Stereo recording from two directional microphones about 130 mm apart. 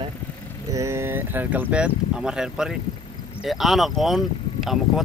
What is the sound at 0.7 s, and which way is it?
Speech, 20° right (ahead or behind).